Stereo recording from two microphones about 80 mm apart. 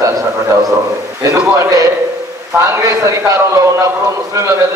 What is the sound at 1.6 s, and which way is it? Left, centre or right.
A man's voice, right.